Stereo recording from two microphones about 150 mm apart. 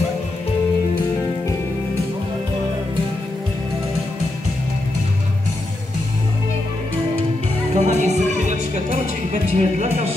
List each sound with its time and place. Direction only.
7.7 s music: 50° right (ahead or behind)